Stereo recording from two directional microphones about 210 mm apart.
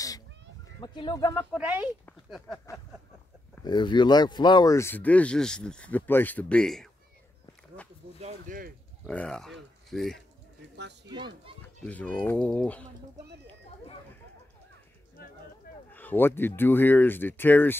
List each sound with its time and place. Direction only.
0.7 s speech: 20° left (ahead or behind)
1.5 s speech: 5° right (ahead or behind)
2.0 s speech: 5° left (ahead or behind)
3.6 s speech: 20° left (ahead or behind); by 6.9 s 5° left (ahead or behind)
8.2 s speech: 40° right (ahead or behind)
9.0 s speech: 5° left (ahead or behind)
11.8 s speech: 5° left (ahead or behind)
15.9 s speech: 10° left (ahead or behind)